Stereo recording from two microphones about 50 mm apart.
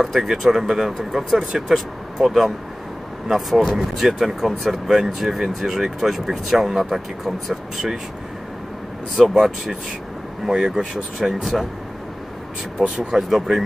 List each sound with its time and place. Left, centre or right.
0.0 s speech: centre
1.5 s speech: centre
2.2 s speech: centre
9.2 s speech: centre
12.9 s speech: centre